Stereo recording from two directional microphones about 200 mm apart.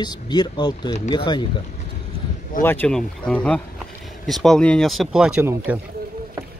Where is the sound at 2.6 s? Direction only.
10° left (ahead or behind); by 5.8 s 10° right (ahead or behind).